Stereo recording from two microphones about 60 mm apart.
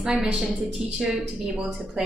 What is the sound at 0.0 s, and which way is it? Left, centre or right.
A woman's voice, centre.